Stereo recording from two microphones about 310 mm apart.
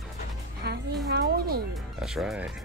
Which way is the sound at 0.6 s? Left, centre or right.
Right.